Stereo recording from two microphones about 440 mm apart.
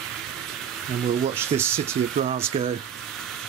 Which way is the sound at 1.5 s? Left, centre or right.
Centre.